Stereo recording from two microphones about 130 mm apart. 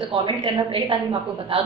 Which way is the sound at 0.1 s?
40° right (ahead or behind).